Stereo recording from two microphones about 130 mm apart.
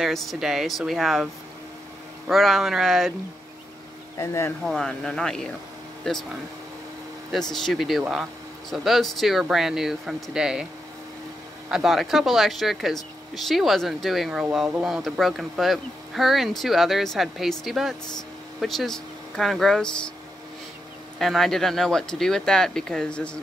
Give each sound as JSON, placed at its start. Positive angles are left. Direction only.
{"t": 0.0, "sound": "speech", "side_deg": 0}
{"t": 4.2, "sound": "speech", "side_deg": 20}
{"t": 4.6, "sound": "speech", "side_deg": 5}
{"t": 7.5, "sound": "speech", "side_deg": 0}
{"t": 11.7, "sound": "speech", "side_deg": 0}
{"t": 21.2, "sound": "speech", "side_deg": 0}